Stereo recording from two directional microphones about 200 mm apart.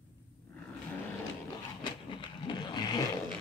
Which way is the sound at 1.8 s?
25° left (ahead or behind).